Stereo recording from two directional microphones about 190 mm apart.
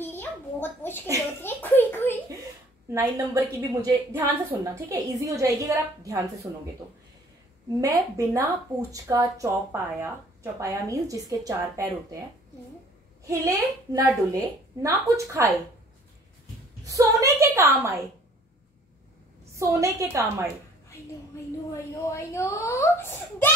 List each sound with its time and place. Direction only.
0.0 s a sound: 10° left (ahead or behind)
1.4 s a child's voice: 10° left (ahead or behind)
2.9 s a woman's voice: 15° right (ahead or behind)
7.8 s a woman's voice: 15° right (ahead or behind)
13.3 s a woman's voice: 15° right (ahead or behind)
16.8 s a woman's voice: 15° right (ahead or behind)
19.5 s a woman's voice: 15° right (ahead or behind)
22.0 s a woman's voice: 15° left (ahead or behind)